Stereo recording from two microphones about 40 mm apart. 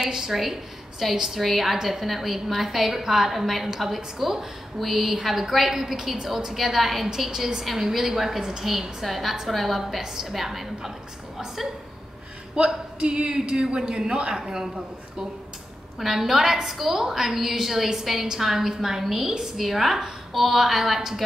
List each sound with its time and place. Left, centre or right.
0.0 s a woman's voice: centre
0.4 s a woman's voice: centre
7.2 s a woman's voice: centre
12.5 s a man's voice: right
16.0 s a woman's voice: centre